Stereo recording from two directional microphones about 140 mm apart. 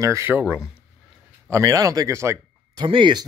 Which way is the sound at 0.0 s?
20° right (ahead or behind).